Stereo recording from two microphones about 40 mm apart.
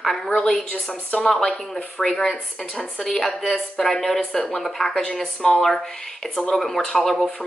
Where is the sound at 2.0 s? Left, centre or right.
Left.